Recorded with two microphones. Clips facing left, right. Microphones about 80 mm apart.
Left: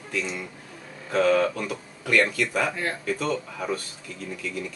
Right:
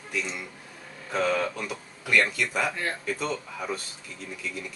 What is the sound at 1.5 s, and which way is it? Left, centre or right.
Speech, centre.